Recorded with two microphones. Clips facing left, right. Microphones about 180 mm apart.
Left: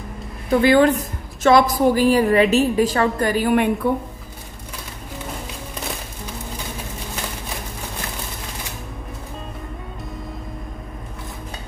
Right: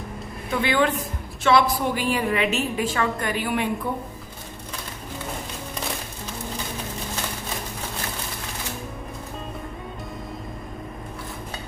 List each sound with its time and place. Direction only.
0.5 s a woman's voice: 40° left (ahead or behind)
3.8 s speech: 75° left (ahead or behind)